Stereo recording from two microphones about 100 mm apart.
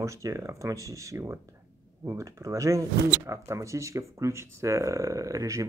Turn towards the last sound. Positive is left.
turn(degrees=-35)  # may be behind; listen again after turning